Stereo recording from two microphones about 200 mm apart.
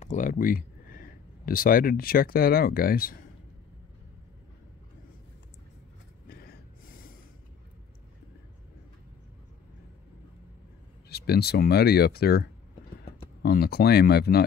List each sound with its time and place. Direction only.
0.0 s speech: 40° left (ahead or behind)
6.2 s gasp: 50° left (ahead or behind)
11.1 s speech: 55° left (ahead or behind)